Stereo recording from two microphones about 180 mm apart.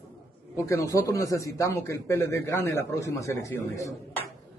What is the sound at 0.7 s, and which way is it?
Speech, 15° left (ahead or behind).